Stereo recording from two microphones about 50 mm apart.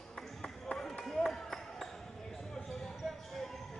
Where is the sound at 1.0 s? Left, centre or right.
Centre.